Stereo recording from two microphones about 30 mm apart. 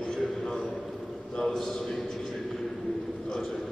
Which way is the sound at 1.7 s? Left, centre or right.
Left.